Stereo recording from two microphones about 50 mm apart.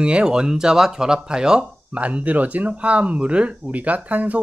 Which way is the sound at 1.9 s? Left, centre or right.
Right.